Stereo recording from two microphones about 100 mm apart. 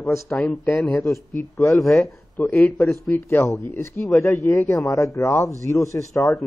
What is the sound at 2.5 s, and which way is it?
A man's voice, 30° left (ahead or behind).